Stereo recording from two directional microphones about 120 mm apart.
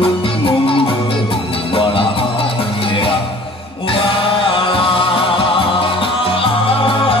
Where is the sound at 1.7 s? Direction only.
50° left (ahead or behind).